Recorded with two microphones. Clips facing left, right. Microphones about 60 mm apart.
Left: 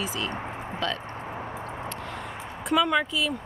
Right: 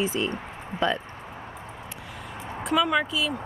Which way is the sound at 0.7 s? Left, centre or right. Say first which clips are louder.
Right 5 dB; left.